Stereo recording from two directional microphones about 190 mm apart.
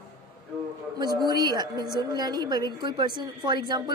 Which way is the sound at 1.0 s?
20° right (ahead or behind).